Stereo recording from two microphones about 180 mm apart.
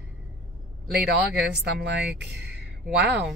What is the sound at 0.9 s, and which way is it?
Speech, 65° right (ahead or behind).